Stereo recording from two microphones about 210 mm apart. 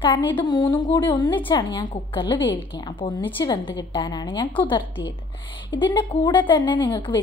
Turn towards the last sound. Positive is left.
turn(degrees=20)  # may be behind; listen again after turning